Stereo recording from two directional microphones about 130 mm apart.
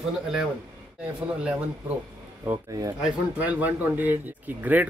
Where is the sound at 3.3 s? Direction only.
10° right (ahead or behind).